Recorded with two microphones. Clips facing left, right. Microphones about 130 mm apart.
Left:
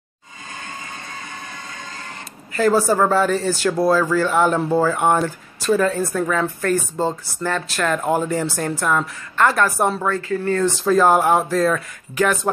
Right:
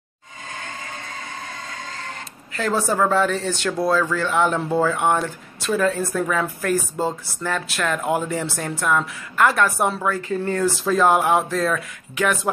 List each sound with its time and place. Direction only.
2.5 s speech: 5° left (ahead or behind)
10.2 s speech: 20° right (ahead or behind)
10.6 s speech: centre (ahead or behind)